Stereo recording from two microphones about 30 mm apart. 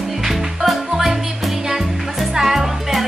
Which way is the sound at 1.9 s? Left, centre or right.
Centre.